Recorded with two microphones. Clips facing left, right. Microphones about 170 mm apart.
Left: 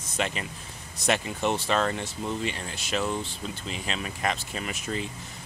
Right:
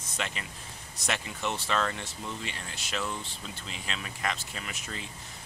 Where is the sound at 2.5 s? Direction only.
20° left (ahead or behind).